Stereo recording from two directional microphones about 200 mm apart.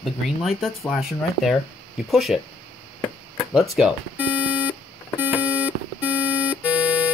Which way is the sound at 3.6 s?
Centre (ahead or behind).